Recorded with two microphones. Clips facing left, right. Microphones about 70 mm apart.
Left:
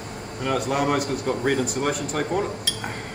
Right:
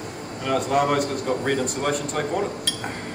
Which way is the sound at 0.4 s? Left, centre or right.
Centre.